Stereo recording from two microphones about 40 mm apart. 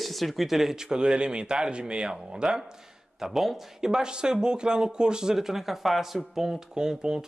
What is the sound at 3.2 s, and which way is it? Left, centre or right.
Speech, centre.